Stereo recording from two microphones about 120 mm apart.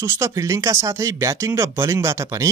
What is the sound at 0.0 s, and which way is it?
Speech, 25° right (ahead or behind).